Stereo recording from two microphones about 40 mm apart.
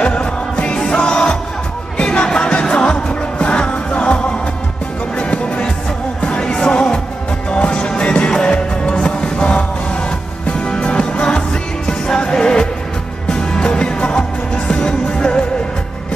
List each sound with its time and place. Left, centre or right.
0.0 s music: left